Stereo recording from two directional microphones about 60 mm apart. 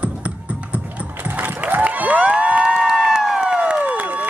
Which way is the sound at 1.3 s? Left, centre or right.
Right.